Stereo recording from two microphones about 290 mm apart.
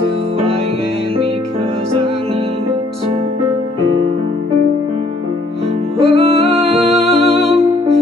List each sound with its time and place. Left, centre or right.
5.9 s music: right